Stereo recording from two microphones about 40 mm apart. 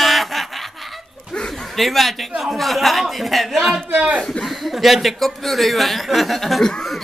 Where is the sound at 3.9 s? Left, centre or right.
Right.